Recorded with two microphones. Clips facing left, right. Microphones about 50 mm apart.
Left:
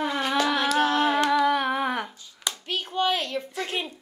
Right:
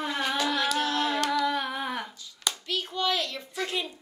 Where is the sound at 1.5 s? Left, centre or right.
Left.